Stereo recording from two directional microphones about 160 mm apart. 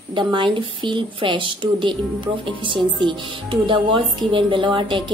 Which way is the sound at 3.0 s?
30° right (ahead or behind).